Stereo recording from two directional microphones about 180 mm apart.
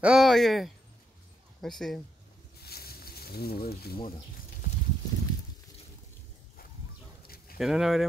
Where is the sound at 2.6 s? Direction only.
60° left (ahead or behind).